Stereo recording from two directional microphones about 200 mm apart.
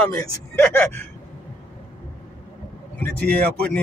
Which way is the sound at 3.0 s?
5° left (ahead or behind).